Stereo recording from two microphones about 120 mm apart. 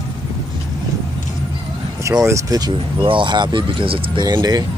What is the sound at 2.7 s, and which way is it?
Speech, 45° right (ahead or behind).